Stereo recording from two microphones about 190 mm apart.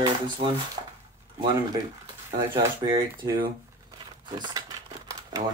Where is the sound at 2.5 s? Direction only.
25° right (ahead or behind).